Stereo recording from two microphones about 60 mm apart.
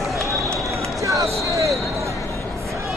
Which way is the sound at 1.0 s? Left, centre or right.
Right.